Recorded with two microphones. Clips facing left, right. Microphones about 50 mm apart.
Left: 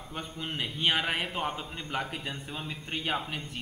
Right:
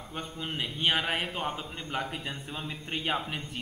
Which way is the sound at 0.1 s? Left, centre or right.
Centre.